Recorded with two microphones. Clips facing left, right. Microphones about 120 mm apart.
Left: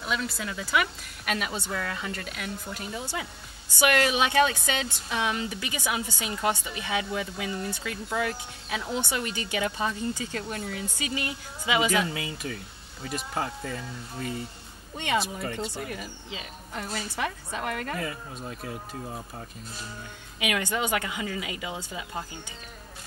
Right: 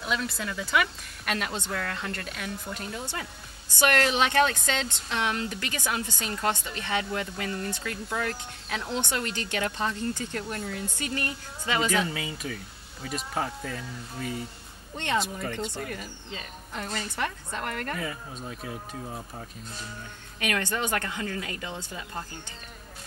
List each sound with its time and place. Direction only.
0.0 s a woman's voice: centre (ahead or behind)
20.3 s a woman's voice: 10° left (ahead or behind)